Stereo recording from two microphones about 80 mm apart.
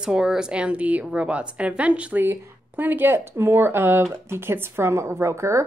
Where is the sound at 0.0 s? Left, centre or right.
Centre.